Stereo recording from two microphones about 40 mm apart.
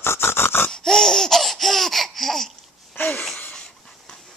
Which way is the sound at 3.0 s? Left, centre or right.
Left.